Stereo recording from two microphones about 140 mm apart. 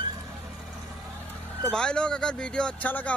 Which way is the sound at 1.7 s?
5° left (ahead or behind).